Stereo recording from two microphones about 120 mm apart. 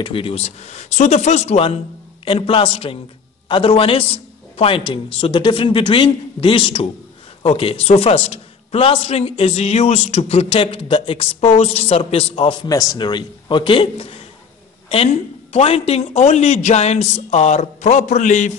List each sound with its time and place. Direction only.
0.0 s a man's voice: 50° left (ahead or behind); by 1.7 s 70° left (ahead or behind)
2.2 s a man's voice: 50° left (ahead or behind)
12.6 s a man's voice: 35° left (ahead or behind)
15.5 s a man's voice: 60° left (ahead or behind); by 18.5 s 85° left